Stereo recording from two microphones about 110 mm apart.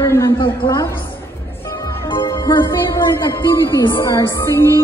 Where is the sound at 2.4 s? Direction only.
45° left (ahead or behind).